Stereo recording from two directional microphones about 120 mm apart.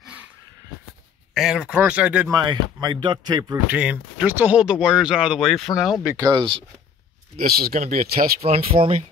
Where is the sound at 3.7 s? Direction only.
10° right (ahead or behind).